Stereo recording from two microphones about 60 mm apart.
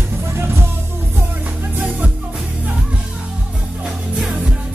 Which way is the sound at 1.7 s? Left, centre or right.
Right.